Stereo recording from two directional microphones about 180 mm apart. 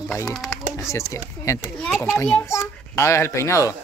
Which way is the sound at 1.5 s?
15° left (ahead or behind).